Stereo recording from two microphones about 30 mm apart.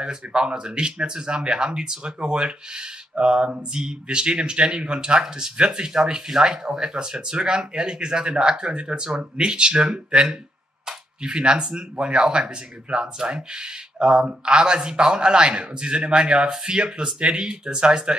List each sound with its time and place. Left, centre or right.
0.0 s a man's voice: right
11.2 s a man's voice: right